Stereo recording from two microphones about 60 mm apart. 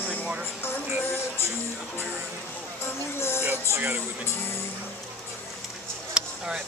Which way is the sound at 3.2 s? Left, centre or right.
Left.